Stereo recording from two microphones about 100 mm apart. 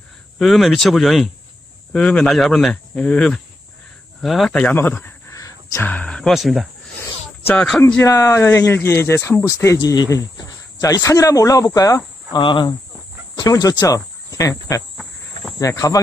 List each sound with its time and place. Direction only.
0.4 s speech: centre (ahead or behind)
2.7 s speech: 10° left (ahead or behind)
4.6 s speech: 20° left (ahead or behind); by 6.7 s centre (ahead or behind)
8.0 s speech: 30° left (ahead or behind)
9.8 s speech: 40° left (ahead or behind)
12.3 s speech: 50° left (ahead or behind)
13.4 s speech: 40° left (ahead or behind)